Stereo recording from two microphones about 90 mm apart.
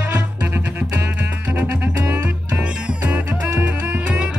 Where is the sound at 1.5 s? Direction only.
15° right (ahead or behind).